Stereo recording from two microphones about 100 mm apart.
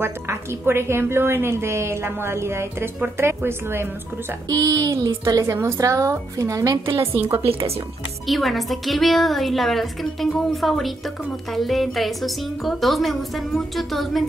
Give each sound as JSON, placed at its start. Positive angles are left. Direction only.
{"t": 0.0, "sound": "a woman's voice", "side_deg": -25}
{"t": 4.5, "sound": "a woman's voice", "side_deg": -35}
{"t": 8.3, "sound": "a woman's voice", "side_deg": 0}